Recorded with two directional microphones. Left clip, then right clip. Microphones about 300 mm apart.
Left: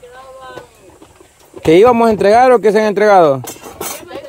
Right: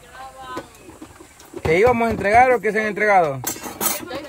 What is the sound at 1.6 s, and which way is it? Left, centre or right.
Speech, left.